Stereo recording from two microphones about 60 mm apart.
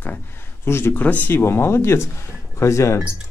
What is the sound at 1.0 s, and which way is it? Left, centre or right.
Speech, left.